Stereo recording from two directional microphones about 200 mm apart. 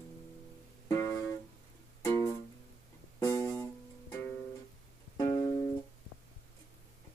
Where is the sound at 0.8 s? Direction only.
15° left (ahead or behind).